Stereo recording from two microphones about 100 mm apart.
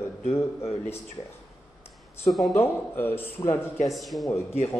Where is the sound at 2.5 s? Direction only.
20° left (ahead or behind).